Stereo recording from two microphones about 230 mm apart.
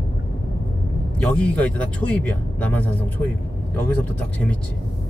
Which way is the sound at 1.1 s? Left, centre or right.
Centre.